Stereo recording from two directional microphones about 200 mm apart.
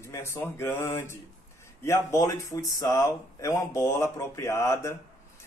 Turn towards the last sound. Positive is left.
turn(degrees=15)  # may be behind; listen again after turning